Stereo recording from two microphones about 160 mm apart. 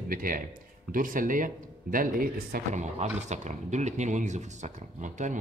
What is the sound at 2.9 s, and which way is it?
Speech, 45° right (ahead or behind).